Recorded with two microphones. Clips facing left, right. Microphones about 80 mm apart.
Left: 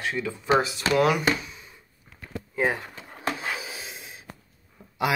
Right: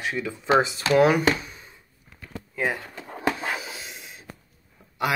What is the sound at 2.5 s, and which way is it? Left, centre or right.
Speech, left.